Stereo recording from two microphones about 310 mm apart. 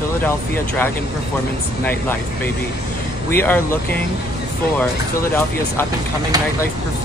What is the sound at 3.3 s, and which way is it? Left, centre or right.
Speech, centre.